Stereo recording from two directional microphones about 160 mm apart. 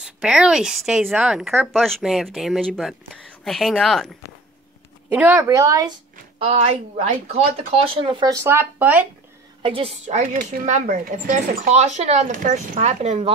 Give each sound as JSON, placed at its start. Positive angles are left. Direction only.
{"t": 0.0, "sound": "a woman's voice", "side_deg": -5}
{"t": 5.1, "sound": "a woman's voice", "side_deg": -15}
{"t": 6.4, "sound": "speech", "side_deg": -40}
{"t": 9.6, "sound": "speech", "side_deg": -35}